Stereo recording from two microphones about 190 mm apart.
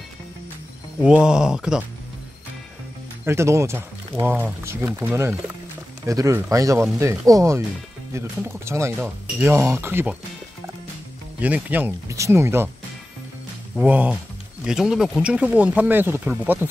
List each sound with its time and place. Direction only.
1.0 s speech: 5° right (ahead or behind)
3.3 s speech: 15° right (ahead or behind)
11.3 s speech: 10° right (ahead or behind)
13.7 s speech: 10° right (ahead or behind)